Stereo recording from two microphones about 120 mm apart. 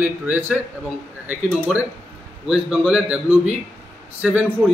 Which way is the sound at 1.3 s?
15° right (ahead or behind).